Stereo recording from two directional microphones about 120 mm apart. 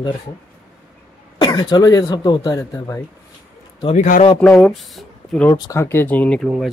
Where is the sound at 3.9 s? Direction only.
70° left (ahead or behind).